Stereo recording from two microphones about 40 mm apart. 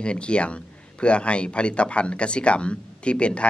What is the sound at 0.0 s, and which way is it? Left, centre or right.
Speech, left.